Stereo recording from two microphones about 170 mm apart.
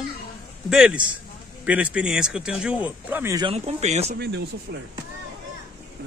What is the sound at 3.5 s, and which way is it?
Speech, 40° right (ahead or behind).